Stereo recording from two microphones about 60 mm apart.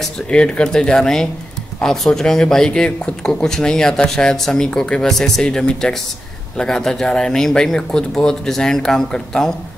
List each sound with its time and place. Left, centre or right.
0.3 s speech: centre